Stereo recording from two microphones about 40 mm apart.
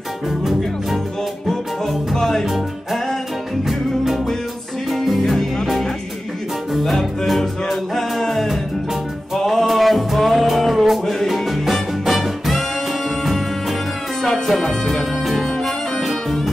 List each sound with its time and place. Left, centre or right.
0.4 s music: centre
1.5 s music: centre
2.4 s music: centre